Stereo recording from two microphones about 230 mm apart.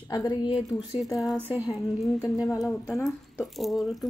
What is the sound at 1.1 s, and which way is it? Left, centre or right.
Cutlery, centre.